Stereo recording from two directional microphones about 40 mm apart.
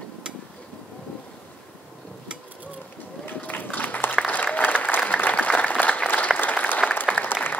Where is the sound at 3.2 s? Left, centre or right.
Left.